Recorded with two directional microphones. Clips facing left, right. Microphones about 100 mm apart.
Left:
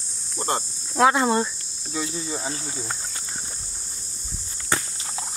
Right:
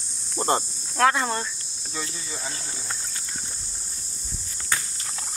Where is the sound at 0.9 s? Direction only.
15° left (ahead or behind).